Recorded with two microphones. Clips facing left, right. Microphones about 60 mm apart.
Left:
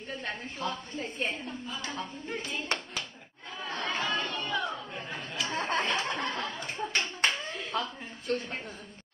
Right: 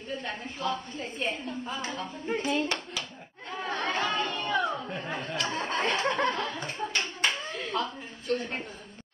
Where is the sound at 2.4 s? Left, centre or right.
Right.